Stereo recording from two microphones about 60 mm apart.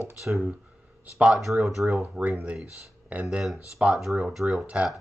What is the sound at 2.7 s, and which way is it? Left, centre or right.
Speech, right.